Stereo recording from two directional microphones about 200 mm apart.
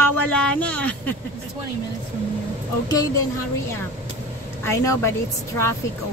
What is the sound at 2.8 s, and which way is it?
Speech, 15° left (ahead or behind).